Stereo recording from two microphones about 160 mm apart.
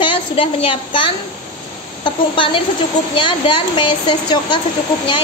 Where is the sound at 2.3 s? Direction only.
30° left (ahead or behind).